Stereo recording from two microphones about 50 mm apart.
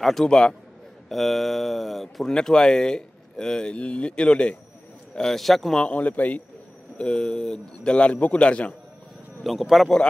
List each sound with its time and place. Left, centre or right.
0.0 s speech: centre
0.3 s speech: centre
1.0 s speech: centre
2.3 s speech: centre
5.1 s speech: centre
5.9 s a man's voice: left
7.1 s a man's voice: centre
9.4 s speech: centre